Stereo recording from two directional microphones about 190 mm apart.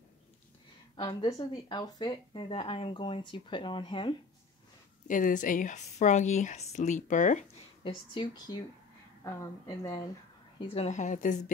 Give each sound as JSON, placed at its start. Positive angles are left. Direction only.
{"t": 0.9, "sound": "speech", "side_deg": 25}
{"t": 5.0, "sound": "speech", "side_deg": 45}
{"t": 7.8, "sound": "speech", "side_deg": 25}
{"t": 10.6, "sound": "speech", "side_deg": 30}